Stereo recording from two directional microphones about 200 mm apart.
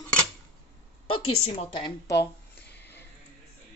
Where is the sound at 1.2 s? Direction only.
30° left (ahead or behind).